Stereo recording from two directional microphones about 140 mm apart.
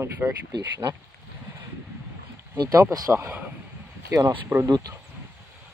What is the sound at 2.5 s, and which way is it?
Speech, 30° right (ahead or behind).